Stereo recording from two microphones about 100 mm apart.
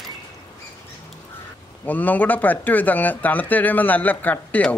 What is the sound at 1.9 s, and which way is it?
Speech, 15° left (ahead or behind).